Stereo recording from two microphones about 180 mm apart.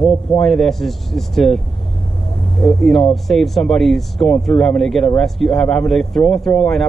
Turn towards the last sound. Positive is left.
turn(degrees=0)  # may be behind; listen again after turning